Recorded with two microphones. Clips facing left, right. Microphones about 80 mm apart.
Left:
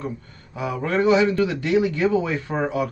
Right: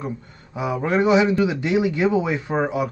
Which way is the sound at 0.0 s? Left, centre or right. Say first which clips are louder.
Right 1 dB; centre.